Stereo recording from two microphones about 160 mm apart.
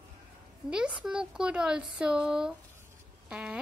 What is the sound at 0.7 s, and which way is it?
A child's voice, 5° right (ahead or behind).